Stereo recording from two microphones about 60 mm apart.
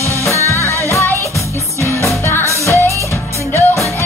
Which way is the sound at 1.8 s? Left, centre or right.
Left.